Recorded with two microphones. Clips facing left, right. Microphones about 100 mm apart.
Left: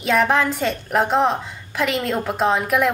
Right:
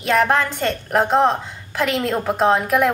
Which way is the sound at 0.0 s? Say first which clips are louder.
Even; centre (ahead or behind).